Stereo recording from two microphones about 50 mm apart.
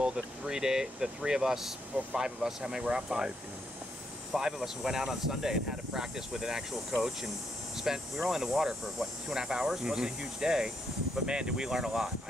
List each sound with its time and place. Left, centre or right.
0.0 s speech: centre
4.4 s speech: centre
7.7 s speech: centre